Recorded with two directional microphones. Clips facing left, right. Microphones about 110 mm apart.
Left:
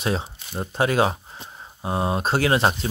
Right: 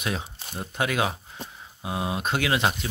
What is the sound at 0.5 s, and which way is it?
Speech, 35° left (ahead or behind).